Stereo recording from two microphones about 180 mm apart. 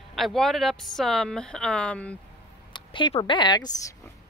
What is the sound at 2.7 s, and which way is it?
Speech, 25° left (ahead or behind).